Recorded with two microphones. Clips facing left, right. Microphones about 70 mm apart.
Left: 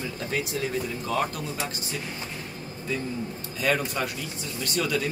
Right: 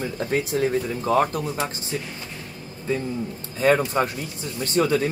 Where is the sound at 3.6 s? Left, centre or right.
Right.